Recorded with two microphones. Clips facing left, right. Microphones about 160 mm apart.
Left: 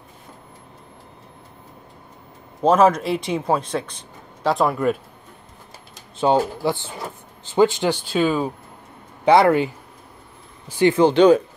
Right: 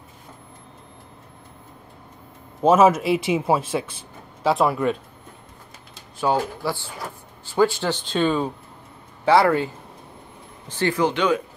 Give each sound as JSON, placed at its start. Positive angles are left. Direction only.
{"t": 2.6, "sound": "speech", "side_deg": -5}
{"t": 5.9, "sound": "speech", "side_deg": 25}
{"t": 9.2, "sound": "speech", "side_deg": 20}
{"t": 10.7, "sound": "speech", "side_deg": 15}
{"t": 11.0, "sound": "speech", "side_deg": 30}